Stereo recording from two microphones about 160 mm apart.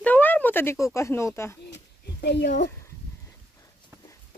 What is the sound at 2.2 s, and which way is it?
Speech, 90° left.